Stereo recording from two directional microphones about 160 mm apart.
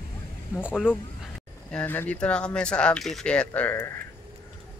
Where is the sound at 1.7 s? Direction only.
10° left (ahead or behind).